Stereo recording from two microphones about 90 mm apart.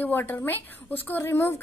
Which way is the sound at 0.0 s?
25° left (ahead or behind).